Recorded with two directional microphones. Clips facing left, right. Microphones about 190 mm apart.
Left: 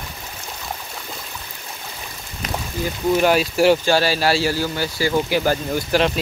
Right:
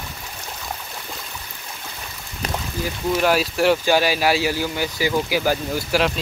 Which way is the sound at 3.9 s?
15° right (ahead or behind).